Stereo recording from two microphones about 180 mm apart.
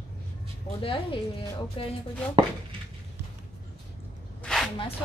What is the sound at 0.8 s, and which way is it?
Speech, 30° left (ahead or behind).